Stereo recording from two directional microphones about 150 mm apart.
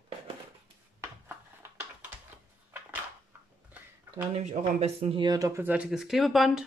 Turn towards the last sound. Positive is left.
turn(degrees=0)  # may be behind; listen again after turning